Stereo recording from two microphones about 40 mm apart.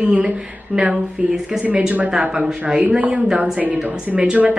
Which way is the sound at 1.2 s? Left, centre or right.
Right.